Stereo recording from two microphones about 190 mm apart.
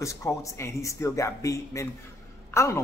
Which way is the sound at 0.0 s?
15° left (ahead or behind).